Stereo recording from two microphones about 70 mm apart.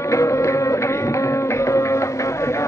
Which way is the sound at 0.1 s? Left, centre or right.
Left.